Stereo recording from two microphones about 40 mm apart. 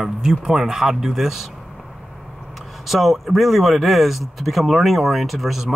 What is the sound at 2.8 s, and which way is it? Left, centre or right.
Speech, centre.